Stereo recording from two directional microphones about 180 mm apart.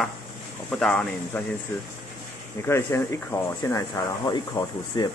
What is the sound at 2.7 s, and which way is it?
Speech, 15° left (ahead or behind).